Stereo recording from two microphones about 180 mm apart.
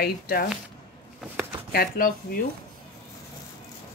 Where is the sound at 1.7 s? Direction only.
55° left (ahead or behind).